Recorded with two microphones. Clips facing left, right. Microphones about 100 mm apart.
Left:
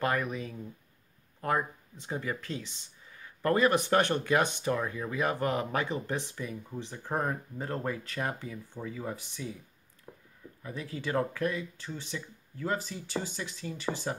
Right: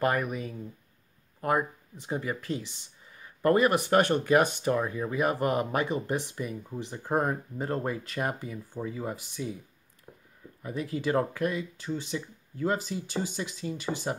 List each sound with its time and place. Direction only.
0.0 s speech: 10° right (ahead or behind)
10.1 s a sound: 10° left (ahead or behind)
10.6 s speech: 15° right (ahead or behind)
12.1 s speech: 30° right (ahead or behind)
12.6 s speech: 15° right (ahead or behind)